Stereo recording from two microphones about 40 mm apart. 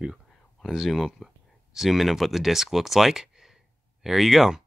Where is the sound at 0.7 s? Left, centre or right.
Centre.